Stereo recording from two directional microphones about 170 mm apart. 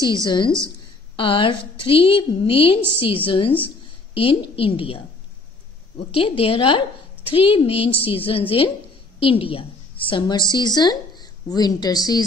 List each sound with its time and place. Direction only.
1.1 s a woman's voice: 30° left (ahead or behind)
6.1 s a woman's voice: 35° left (ahead or behind)